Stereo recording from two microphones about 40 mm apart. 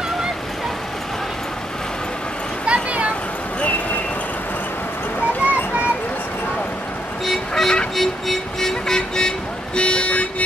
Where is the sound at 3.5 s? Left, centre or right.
Left.